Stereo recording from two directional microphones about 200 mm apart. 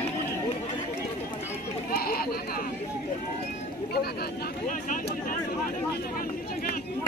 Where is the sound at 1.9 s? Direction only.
50° left (ahead or behind).